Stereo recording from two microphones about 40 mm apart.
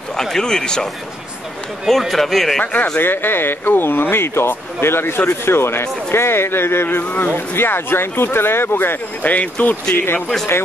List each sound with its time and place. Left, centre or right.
0.1 s speech: centre
1.9 s speech: centre
2.6 s speech: left
3.0 s speech: left
9.2 s speech: left